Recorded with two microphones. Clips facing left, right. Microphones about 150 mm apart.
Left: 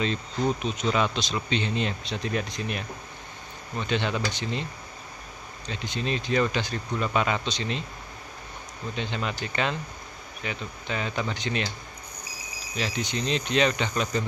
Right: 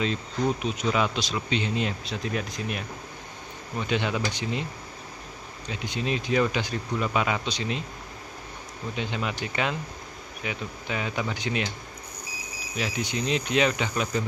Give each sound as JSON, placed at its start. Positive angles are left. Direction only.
{"t": 0.0, "sound": "speech", "side_deg": -10}
{"t": 5.7, "sound": "speech", "side_deg": -10}
{"t": 8.9, "sound": "speech", "side_deg": -10}
{"t": 12.7, "sound": "speech", "side_deg": -10}